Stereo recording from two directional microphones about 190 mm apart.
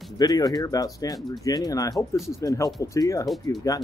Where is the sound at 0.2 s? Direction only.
20° left (ahead or behind).